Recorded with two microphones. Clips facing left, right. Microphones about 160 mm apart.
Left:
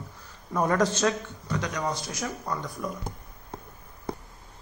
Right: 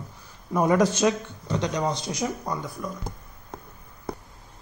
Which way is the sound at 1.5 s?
25° right (ahead or behind).